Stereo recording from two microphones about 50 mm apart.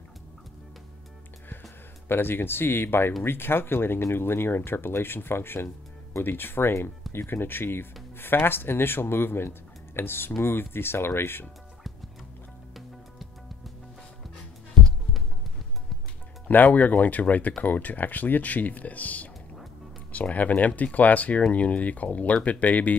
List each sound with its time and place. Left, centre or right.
2.0 s speech: left
16.4 s speech: left